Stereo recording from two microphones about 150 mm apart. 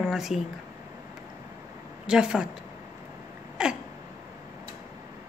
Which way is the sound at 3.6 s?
5° right (ahead or behind).